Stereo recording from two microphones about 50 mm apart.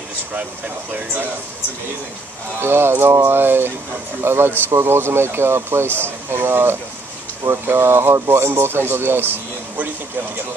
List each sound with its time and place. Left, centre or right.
2.6 s speech: right